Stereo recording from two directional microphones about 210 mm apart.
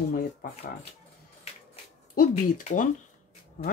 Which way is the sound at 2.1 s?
40° left (ahead or behind).